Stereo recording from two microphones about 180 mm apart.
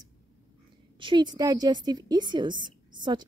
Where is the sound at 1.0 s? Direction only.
25° right (ahead or behind).